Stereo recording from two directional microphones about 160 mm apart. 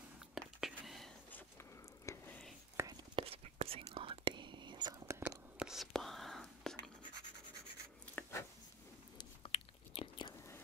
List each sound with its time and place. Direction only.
0.3 s whispering: centre (ahead or behind)
2.8 s whispering: 15° right (ahead or behind)
3.2 s whispering: 35° right (ahead or behind); by 5.4 s 20° right (ahead or behind)
5.6 s whispering: centre (ahead or behind)
8.2 s a sound: 15° left (ahead or behind)
9.2 s chewing: 35° left (ahead or behind)